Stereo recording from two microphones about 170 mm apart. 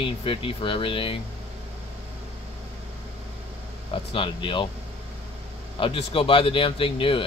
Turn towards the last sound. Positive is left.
turn(degrees=30)  # may be behind; listen again after turning